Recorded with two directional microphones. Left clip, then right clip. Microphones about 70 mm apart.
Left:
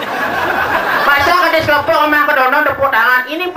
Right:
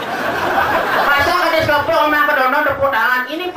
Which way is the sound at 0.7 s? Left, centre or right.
Left.